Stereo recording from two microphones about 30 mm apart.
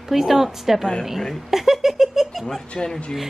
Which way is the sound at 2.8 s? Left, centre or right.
Centre.